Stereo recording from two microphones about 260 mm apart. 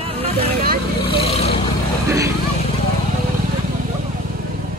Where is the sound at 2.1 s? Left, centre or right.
Centre.